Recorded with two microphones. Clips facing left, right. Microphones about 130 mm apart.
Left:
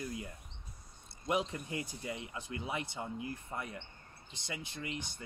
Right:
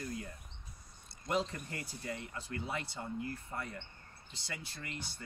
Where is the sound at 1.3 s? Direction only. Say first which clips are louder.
Left 1 dB; 15° left (ahead or behind).